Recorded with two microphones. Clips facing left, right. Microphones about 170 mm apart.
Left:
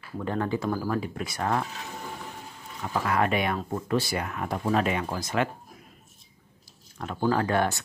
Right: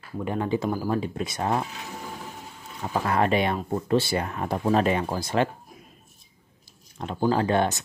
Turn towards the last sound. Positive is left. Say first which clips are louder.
# right 2 dB
turn(degrees=-20)  # may be behind; listen again after turning